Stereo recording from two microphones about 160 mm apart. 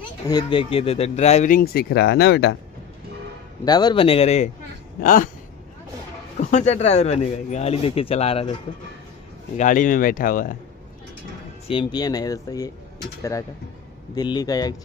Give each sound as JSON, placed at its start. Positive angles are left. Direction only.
{"t": 0.3, "sound": "speech", "side_deg": 30}
{"t": 1.6, "sound": "speech", "side_deg": 75}
{"t": 3.6, "sound": "speech", "side_deg": 25}
{"t": 5.0, "sound": "speech", "side_deg": 60}
{"t": 6.5, "sound": "speech", "side_deg": 45}
{"t": 9.6, "sound": "speech", "side_deg": 55}
{"t": 11.6, "sound": "speech", "side_deg": 30}